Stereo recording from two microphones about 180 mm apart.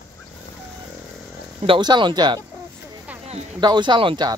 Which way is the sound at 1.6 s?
25° right (ahead or behind).